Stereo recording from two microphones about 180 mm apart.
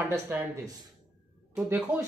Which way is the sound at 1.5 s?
10° right (ahead or behind).